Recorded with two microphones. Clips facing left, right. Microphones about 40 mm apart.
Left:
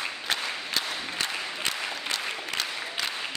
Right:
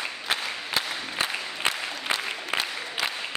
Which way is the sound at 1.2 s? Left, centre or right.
Centre.